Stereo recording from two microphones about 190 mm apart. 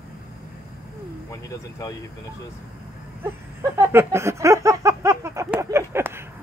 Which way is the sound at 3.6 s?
15° right (ahead or behind).